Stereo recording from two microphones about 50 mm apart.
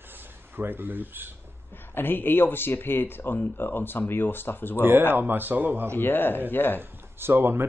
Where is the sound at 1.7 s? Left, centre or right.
Left.